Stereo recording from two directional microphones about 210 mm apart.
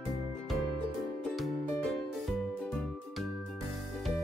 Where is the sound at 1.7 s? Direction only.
5° left (ahead or behind).